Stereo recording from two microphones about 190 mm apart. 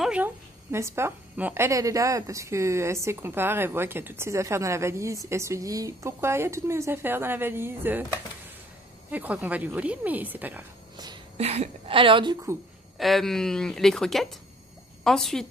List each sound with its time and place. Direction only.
0.0 s a woman's voice: 10° right (ahead or behind)
9.1 s a woman's voice: 10° right (ahead or behind)
11.3 s a woman's voice: 35° right (ahead or behind)
12.9 s speech: centre (ahead or behind)